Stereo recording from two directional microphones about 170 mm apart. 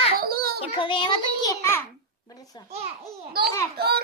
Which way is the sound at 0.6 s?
30° left (ahead or behind).